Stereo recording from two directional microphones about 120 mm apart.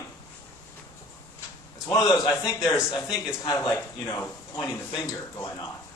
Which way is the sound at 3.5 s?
25° left (ahead or behind).